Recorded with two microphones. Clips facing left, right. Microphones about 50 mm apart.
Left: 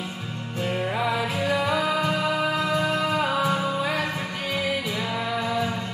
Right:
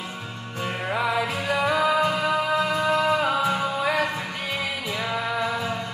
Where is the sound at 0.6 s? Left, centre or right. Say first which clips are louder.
Even; right.